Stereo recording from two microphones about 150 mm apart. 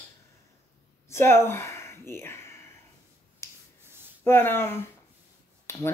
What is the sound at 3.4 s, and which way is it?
Rub, 20° left (ahead or behind).